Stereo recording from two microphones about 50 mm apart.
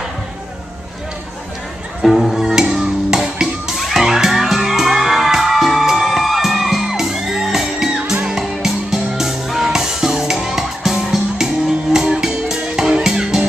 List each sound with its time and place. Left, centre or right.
2.0 s music: centre